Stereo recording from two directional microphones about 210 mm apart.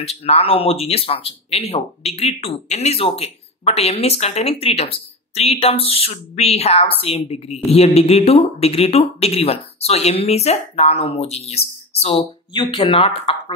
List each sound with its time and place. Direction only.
0.0 s speech: 30° left (ahead or behind)